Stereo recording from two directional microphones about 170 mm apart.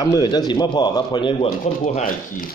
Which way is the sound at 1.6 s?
50° left (ahead or behind).